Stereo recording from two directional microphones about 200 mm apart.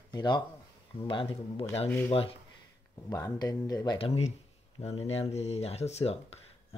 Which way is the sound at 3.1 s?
15° left (ahead or behind).